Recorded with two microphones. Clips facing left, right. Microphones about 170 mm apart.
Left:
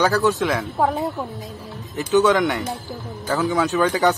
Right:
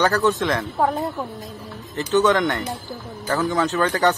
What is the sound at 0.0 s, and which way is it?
Speech, 10° left (ahead or behind).